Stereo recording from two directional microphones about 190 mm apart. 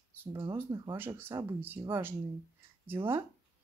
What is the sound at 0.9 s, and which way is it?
Speech, 10° right (ahead or behind).